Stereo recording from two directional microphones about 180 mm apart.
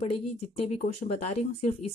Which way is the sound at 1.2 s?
35° left (ahead or behind).